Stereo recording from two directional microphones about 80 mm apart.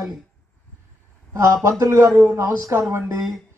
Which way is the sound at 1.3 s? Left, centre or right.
Right.